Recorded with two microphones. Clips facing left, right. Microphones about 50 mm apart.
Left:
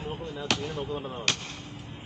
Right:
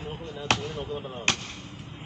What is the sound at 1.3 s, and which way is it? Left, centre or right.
Speech, right.